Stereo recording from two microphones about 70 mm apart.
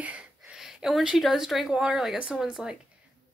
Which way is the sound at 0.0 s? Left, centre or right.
Centre.